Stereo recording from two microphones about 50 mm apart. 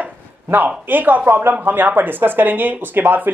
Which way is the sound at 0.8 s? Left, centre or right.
Right.